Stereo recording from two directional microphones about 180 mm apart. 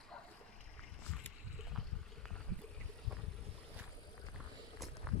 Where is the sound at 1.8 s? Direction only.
Centre (ahead or behind).